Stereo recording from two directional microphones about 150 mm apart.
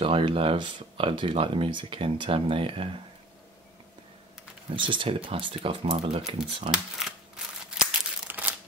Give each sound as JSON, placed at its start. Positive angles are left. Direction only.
{"t": 0.0, "sound": "speech", "side_deg": -35}
{"t": 4.7, "sound": "speech", "side_deg": -35}
{"t": 6.7, "sound": "speech", "side_deg": -5}
{"t": 7.8, "sound": "crumpling", "side_deg": -10}